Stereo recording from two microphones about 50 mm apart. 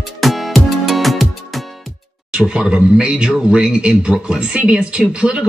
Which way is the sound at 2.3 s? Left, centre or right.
Centre.